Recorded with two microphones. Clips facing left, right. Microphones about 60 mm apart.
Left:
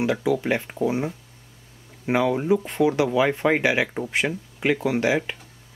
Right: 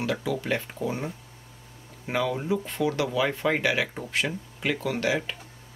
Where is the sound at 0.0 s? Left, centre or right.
Centre.